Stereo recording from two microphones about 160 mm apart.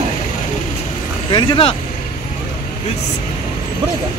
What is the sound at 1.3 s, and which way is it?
Speech, 30° left (ahead or behind).